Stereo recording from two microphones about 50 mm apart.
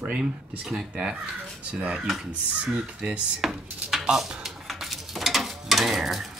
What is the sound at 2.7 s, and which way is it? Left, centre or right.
Speech, right.